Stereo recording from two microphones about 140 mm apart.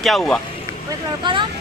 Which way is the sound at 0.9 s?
35° right (ahead or behind).